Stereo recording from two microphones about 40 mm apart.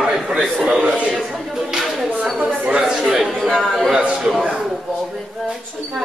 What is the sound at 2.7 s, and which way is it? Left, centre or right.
Chatter, right.